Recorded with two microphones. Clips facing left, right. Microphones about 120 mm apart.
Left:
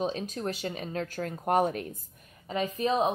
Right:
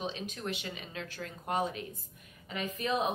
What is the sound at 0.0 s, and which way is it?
Speech, 40° left (ahead or behind).